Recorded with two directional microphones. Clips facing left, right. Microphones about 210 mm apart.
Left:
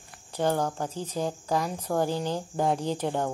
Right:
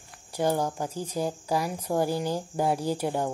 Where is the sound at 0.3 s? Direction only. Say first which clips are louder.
Even; 10° right (ahead or behind).